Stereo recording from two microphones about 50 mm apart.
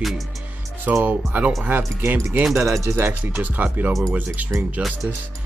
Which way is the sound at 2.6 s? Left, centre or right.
Right.